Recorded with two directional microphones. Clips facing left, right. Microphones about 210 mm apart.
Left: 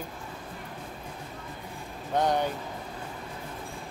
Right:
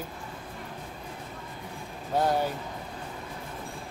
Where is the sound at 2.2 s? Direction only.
5° right (ahead or behind).